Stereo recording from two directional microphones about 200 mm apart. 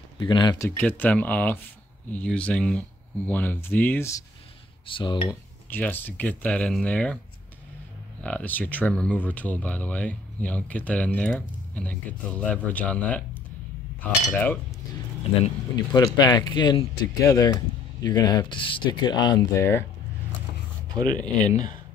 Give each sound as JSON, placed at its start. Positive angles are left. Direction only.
{"t": 0.2, "sound": "speech", "side_deg": 20}
{"t": 0.7, "sound": "speech", "side_deg": 10}
{"t": 4.8, "sound": "speech", "side_deg": 25}
{"t": 5.7, "sound": "speech", "side_deg": 10}
{"t": 8.2, "sound": "speech", "side_deg": 5}
{"t": 15.7, "sound": "speech", "side_deg": 20}
{"t": 20.9, "sound": "speech", "side_deg": -20}
{"t": 21.5, "sound": "speech", "side_deg": 35}